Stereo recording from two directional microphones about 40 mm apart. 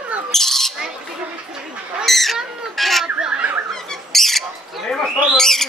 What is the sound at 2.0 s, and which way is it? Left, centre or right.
Bird, centre.